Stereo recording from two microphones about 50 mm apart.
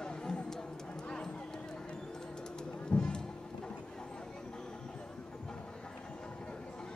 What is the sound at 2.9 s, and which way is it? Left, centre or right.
Music, centre.